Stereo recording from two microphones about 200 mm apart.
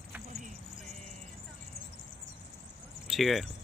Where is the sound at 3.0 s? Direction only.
Centre (ahead or behind).